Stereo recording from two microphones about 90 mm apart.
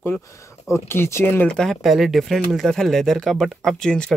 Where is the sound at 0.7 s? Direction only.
30° left (ahead or behind).